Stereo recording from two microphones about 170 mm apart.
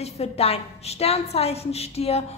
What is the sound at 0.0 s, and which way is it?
A woman's voice, 35° left (ahead or behind).